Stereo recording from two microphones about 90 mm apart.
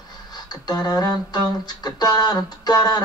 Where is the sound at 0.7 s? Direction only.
50° left (ahead or behind).